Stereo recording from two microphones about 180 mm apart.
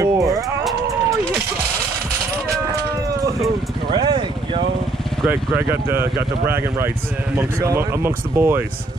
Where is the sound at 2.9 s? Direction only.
20° right (ahead or behind).